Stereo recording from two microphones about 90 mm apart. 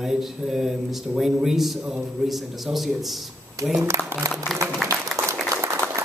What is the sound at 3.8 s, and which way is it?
Speech, 30° right (ahead or behind).